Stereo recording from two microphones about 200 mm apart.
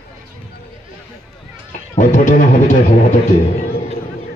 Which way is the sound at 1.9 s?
40° left (ahead or behind).